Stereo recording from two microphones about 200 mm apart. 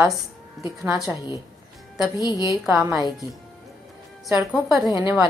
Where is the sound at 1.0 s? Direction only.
20° left (ahead or behind).